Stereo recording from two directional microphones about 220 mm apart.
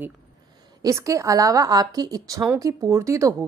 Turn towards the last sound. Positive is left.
turn(degrees=-15)  # may be behind; listen again after turning